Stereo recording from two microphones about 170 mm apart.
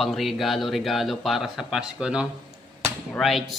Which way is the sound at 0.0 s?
Centre (ahead or behind).